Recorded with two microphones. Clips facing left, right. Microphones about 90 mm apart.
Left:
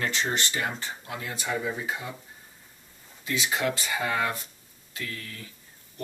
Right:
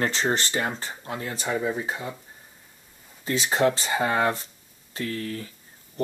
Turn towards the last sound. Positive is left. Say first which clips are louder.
# right 8 dB
turn(degrees=-35)  # may be behind; listen again after turning